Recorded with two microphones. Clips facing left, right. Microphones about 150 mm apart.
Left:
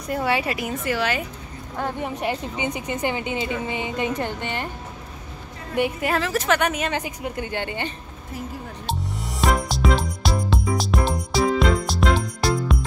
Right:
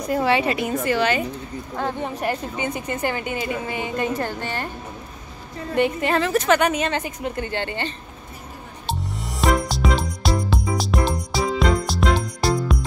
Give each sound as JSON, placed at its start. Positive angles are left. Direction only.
{"t": 0.1, "sound": "a woman's voice", "side_deg": 0}
{"t": 5.8, "sound": "a woman's voice", "side_deg": 5}
{"t": 8.8, "sound": "music", "side_deg": 0}